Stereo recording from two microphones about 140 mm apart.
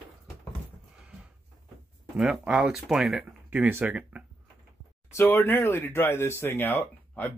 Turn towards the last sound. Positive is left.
turn(degrees=15)  # may be behind; listen again after turning